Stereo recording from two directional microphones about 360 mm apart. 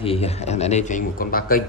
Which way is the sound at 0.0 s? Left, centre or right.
Centre.